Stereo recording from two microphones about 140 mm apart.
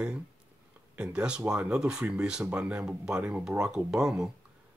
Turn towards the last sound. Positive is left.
turn(degrees=0)  # may be behind; listen again after turning